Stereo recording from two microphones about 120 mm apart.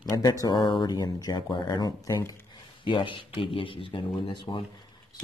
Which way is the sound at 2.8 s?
45° left (ahead or behind).